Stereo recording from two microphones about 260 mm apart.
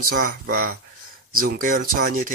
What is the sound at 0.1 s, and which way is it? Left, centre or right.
Speech, right.